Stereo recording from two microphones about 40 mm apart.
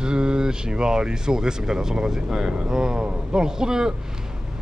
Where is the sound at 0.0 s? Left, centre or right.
Right.